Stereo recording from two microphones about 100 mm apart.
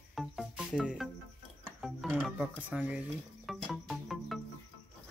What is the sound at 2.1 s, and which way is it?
Speech, 5° right (ahead or behind).